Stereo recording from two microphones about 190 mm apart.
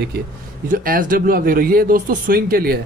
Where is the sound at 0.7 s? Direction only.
45° right (ahead or behind).